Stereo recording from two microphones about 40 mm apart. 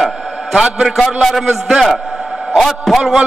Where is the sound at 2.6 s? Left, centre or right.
Centre.